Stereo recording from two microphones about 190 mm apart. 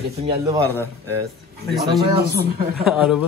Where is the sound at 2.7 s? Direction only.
Centre (ahead or behind).